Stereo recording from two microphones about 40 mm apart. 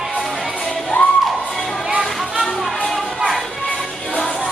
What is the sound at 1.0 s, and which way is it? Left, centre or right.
Music, left.